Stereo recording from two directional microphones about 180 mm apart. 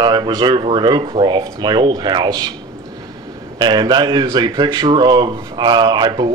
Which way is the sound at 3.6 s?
25° right (ahead or behind).